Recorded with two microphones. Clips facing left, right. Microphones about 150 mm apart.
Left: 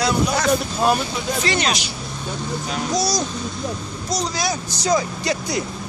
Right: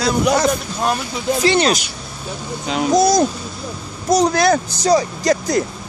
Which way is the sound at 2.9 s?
50° right (ahead or behind).